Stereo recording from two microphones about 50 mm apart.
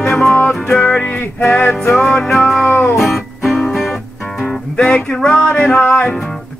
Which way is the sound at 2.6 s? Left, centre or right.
Left.